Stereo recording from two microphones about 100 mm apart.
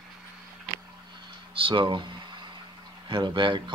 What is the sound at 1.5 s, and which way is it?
Speech, 60° right (ahead or behind).